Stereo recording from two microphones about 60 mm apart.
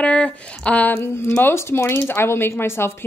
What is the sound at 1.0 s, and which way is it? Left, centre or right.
Speech, left.